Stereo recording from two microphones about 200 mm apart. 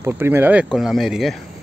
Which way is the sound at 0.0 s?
10° right (ahead or behind).